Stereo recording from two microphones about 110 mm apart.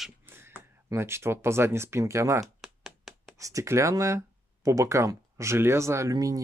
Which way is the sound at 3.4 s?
30° right (ahead or behind).